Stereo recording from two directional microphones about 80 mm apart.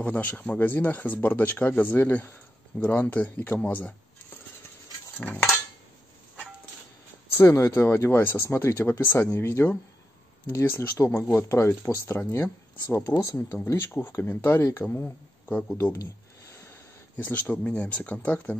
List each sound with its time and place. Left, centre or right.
0.0 s speech: centre
5.2 s speech: centre
7.3 s speech: left
13.2 s speech: left; by 15.9 s centre
17.2 s speech: left